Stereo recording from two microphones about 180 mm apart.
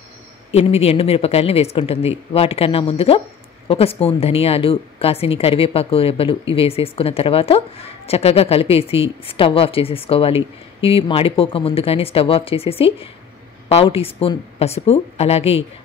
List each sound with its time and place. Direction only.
0.5 s a woman's voice: 35° left (ahead or behind)